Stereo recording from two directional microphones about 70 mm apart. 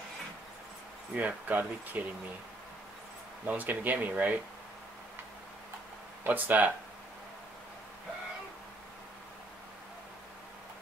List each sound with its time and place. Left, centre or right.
1.1 s speech: right
3.4 s speech: right
6.2 s speech: right